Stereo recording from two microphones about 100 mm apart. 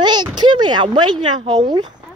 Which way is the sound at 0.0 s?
45° right (ahead or behind).